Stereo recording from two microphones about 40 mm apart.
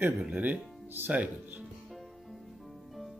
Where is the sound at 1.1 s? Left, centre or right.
Right.